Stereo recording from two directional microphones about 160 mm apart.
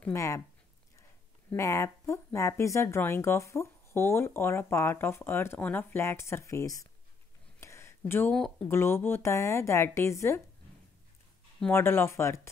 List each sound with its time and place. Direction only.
0.0 s speech: 20° left (ahead or behind)
1.5 s speech: 20° left (ahead or behind)
7.6 s a sound: 15° left (ahead or behind)
8.6 s speech: 15° left (ahead or behind)
11.6 s speech: 15° left (ahead or behind)